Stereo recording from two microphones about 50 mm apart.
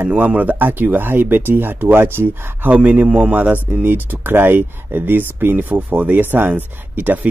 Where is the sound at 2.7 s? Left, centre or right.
Right.